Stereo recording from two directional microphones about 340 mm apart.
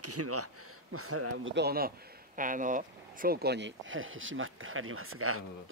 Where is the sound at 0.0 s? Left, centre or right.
Right.